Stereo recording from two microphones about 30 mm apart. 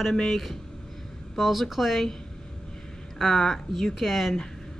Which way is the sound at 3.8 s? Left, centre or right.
Centre.